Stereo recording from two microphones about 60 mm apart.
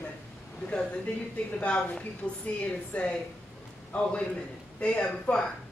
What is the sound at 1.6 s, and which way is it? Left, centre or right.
A woman's voice, centre.